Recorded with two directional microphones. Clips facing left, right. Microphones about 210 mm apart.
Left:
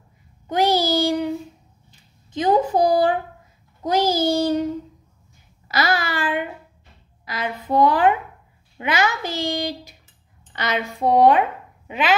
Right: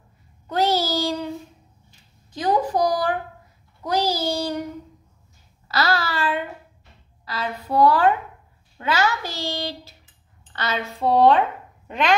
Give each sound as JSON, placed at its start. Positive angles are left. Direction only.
{"t": 0.5, "sound": "child singing", "side_deg": 15}
{"t": 2.3, "sound": "speech", "side_deg": 20}
{"t": 3.8, "sound": "child singing", "side_deg": 25}
{"t": 5.7, "sound": "a sound", "side_deg": 15}
{"t": 7.2, "sound": "a child's voice", "side_deg": 15}